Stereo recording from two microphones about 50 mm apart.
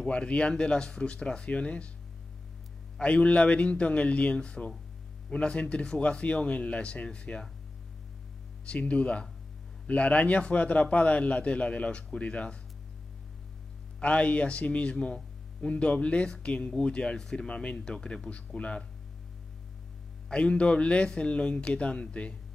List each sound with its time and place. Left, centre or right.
0.0 s a man's voice: left
3.0 s a man's voice: left
8.6 s a man's voice: left
13.9 s a man's voice: left
20.2 s a man's voice: centre